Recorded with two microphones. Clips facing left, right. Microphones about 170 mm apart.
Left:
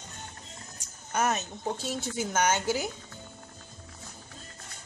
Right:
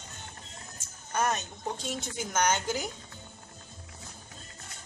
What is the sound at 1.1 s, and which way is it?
A woman's voice, 10° left (ahead or behind).